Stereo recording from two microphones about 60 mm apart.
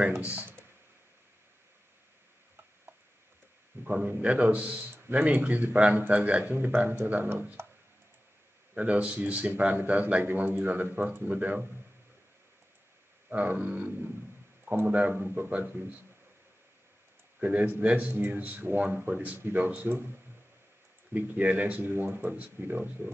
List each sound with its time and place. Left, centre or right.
0.3 s speech: right
3.9 s a man's voice: right
6.4 s a man's voice: right
8.7 s a man's voice: right
10.2 s speech: right
13.3 s a man's voice: right
17.4 s a man's voice: right
19.3 s speech: right
21.2 s speech: right